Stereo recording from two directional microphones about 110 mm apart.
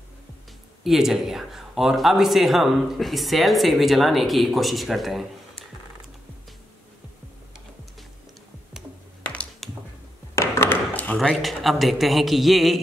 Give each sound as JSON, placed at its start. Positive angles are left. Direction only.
{"t": 0.8, "sound": "a man's voice", "side_deg": -5}
{"t": 9.2, "sound": "tap", "side_deg": 10}
{"t": 10.3, "sound": "a sound", "side_deg": 25}
{"t": 11.1, "sound": "a man's voice", "side_deg": 0}